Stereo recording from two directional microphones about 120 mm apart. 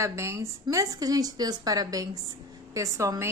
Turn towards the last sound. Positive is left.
turn(degrees=-25)  # may be behind; listen again after turning